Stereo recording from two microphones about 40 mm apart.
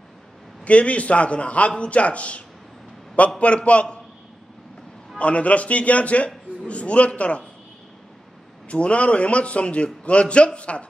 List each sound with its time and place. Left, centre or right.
0.7 s a man's voice: left
5.1 s a man's voice: left
8.6 s a man's voice: left